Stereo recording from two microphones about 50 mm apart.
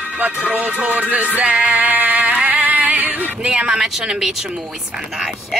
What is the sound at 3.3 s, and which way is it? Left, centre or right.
Speech, centre.